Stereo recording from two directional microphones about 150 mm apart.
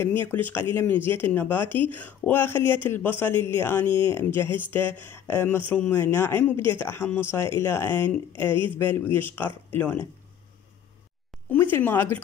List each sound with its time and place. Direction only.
0.0 s speech: 15° left (ahead or behind)
11.4 s speech: 15° left (ahead or behind)